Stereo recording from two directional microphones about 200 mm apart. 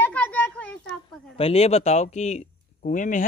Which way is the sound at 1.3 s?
30° left (ahead or behind).